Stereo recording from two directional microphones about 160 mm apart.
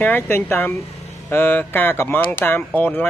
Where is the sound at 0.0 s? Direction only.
15° left (ahead or behind).